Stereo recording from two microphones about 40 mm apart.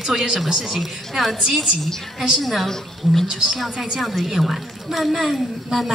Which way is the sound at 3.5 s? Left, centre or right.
Centre.